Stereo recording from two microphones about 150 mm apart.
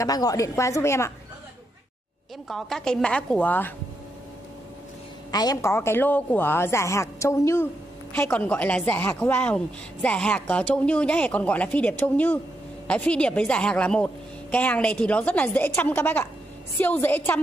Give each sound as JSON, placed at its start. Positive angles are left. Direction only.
{"t": 0.0, "sound": "a woman's voice", "side_deg": 25}
{"t": 2.4, "sound": "a woman's voice", "side_deg": 0}
{"t": 5.3, "sound": "a woman's voice", "side_deg": 25}